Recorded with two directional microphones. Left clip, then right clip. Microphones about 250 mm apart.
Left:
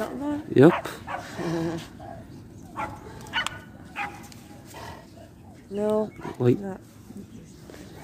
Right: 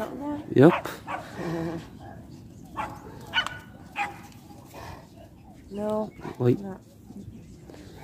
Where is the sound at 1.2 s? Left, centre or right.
Left.